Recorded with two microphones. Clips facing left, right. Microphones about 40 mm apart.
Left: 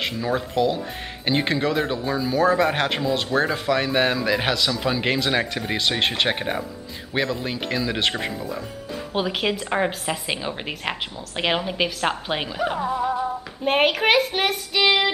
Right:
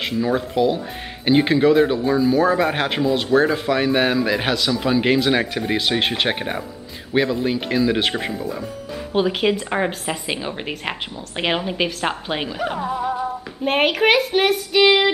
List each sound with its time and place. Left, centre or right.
0.0 s speech: centre